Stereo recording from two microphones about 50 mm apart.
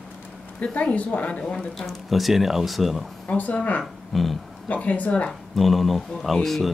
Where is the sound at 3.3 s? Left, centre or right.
Left.